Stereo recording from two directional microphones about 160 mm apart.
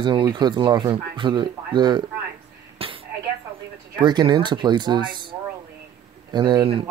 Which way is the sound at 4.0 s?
30° right (ahead or behind).